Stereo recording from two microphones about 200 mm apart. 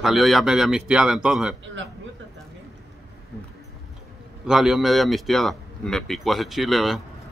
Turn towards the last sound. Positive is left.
turn(degrees=0)  # may be behind; listen again after turning